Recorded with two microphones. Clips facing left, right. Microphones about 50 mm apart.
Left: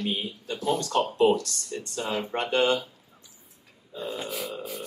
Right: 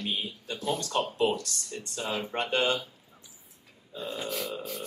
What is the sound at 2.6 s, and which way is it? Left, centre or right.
Speech, left.